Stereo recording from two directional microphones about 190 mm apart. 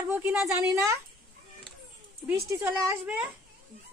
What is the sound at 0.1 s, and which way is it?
Speech, 10° right (ahead or behind).